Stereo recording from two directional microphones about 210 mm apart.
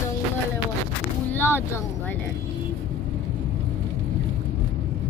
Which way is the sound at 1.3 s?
10° left (ahead or behind).